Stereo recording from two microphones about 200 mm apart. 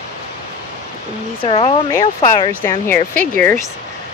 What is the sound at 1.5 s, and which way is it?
Speech, 25° left (ahead or behind).